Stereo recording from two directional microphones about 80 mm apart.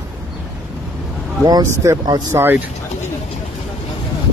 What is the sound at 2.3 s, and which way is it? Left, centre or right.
Speech, right.